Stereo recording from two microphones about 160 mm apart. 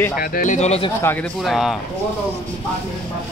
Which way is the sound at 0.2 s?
60° left (ahead or behind).